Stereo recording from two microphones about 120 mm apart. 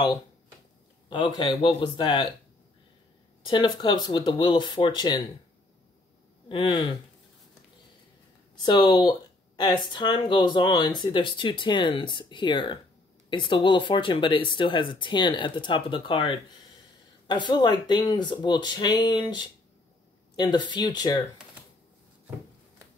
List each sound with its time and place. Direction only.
1.0 s a sound: 45° left (ahead or behind)
1.3 s speech: 35° left (ahead or behind)
3.4 s speech: 40° left (ahead or behind)
6.5 s speech: 45° left (ahead or behind)
8.6 s speech: 40° left (ahead or behind)